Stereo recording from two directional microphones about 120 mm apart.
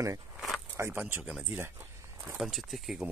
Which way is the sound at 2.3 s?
Centre (ahead or behind).